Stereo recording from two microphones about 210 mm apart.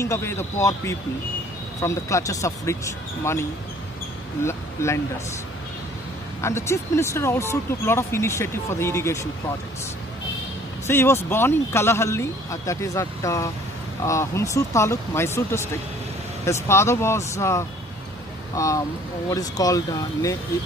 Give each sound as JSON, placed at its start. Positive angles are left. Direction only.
{"t": 0.0, "sound": "speech", "side_deg": 15}
{"t": 4.5, "sound": "speech", "side_deg": 10}
{"t": 6.4, "sound": "speech", "side_deg": 15}
{"t": 10.9, "sound": "speech", "side_deg": 10}